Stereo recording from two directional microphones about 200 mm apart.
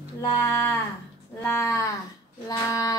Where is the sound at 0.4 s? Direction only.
15° left (ahead or behind).